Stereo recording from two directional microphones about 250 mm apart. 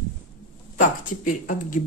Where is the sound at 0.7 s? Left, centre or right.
Left.